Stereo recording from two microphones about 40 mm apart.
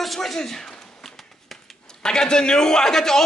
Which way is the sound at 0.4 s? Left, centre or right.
Centre.